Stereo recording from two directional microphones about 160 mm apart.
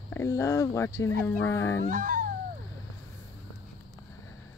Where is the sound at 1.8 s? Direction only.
55° right (ahead or behind).